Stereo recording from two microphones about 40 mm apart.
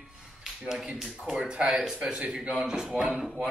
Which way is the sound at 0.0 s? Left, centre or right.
Centre.